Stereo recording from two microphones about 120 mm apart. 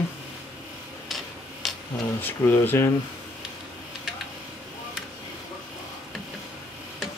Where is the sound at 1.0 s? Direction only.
Centre (ahead or behind).